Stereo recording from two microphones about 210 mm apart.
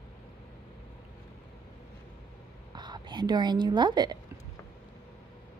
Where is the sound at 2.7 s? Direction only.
20° right (ahead or behind).